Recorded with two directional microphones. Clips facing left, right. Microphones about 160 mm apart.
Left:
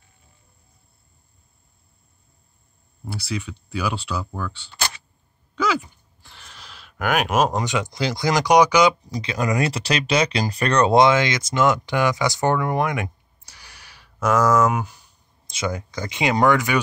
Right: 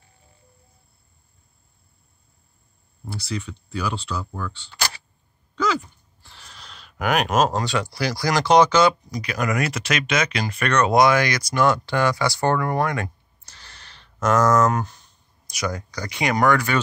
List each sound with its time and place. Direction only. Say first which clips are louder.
3.1 s speech: left 1 dB; 5° left (ahead or behind)
9.1 s speech: left 1 dB; 25° left (ahead or behind); by 15.1 s 10° left (ahead or behind)
15.4 s speech: left 1 dB; 25° left (ahead or behind)